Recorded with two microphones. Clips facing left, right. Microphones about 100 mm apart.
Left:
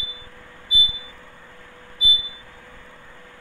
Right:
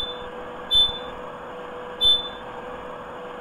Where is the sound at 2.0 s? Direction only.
50° right (ahead or behind).